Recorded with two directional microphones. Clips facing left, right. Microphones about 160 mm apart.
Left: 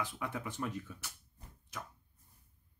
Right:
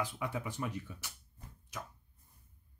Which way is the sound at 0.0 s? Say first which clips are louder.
Right 2 dB; 10° right (ahead or behind).